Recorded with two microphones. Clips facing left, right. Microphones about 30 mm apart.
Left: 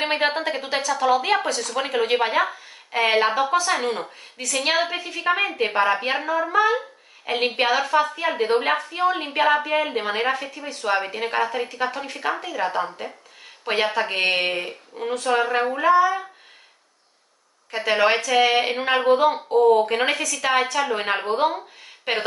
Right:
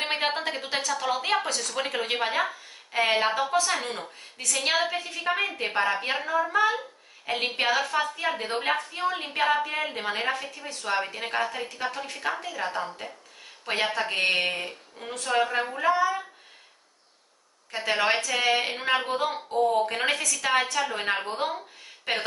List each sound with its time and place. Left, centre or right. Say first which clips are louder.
0.0 s a woman's voice: left 5 dB; centre
17.6 s a woman's voice: left 5 dB; centre